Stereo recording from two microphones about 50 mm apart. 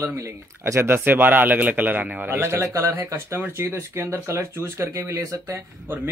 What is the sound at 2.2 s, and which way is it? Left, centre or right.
Speech, right.